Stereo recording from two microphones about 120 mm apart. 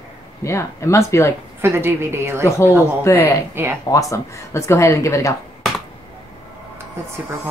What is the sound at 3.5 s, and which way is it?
Wail, 20° right (ahead or behind).